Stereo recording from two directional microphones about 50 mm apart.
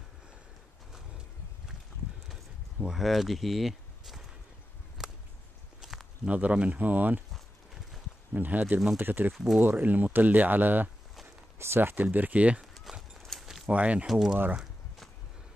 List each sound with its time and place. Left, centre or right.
2.9 s speech: centre
5.0 s a sound: centre
5.8 s walk: centre
6.2 s speech: right
7.3 s walk: centre
8.4 s speech: right
11.5 s speech: right
13.2 s a sound: centre
13.7 s speech: right
14.0 s speech: centre